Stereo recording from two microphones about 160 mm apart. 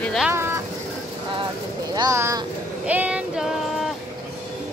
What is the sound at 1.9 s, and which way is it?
Speech, 20° right (ahead or behind).